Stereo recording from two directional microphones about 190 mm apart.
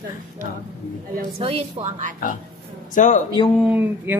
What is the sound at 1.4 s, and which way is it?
Speech, 35° right (ahead or behind).